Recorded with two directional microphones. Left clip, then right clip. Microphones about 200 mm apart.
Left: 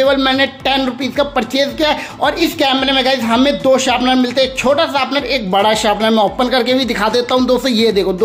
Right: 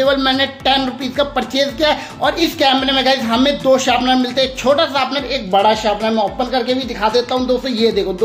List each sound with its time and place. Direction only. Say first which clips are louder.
0.0 s speech: left 2 dB; 20° left (ahead or behind)
5.5 s speech: even; 35° left (ahead or behind)